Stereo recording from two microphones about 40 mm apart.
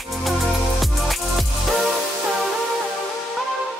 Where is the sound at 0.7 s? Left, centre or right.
Centre.